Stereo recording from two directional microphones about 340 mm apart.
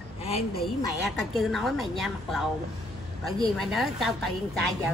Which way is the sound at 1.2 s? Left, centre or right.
Centre.